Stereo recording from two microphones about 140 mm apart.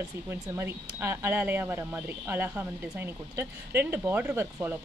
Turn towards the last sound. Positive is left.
turn(degrees=-15)  # may be behind; listen again after turning